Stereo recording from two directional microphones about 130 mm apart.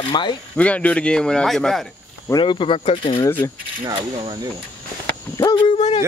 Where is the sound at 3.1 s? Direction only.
20° left (ahead or behind).